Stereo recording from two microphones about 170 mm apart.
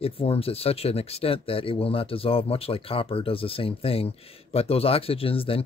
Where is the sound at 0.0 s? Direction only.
35° left (ahead or behind).